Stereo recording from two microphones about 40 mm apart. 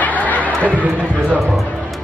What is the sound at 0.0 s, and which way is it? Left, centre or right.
Chatter, left.